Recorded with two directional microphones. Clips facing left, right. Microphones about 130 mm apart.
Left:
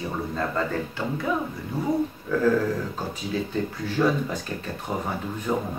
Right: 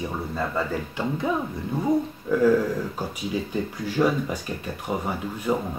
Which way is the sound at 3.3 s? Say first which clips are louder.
Left 2 dB; 10° right (ahead or behind).